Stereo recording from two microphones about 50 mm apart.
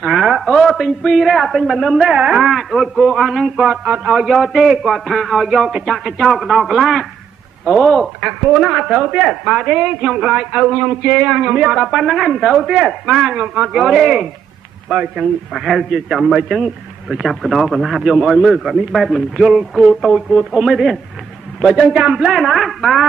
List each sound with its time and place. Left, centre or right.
0.0 s a man's voice: centre
2.0 s a sound: centre
2.4 s a man's voice: centre
3.8 s a sound: right
4.3 s a man's voice: centre
10.7 s a man's voice: right; by 14.2 s centre
15.5 s a man's voice: centre